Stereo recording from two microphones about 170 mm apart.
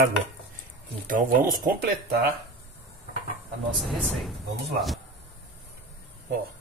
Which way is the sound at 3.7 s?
Centre (ahead or behind).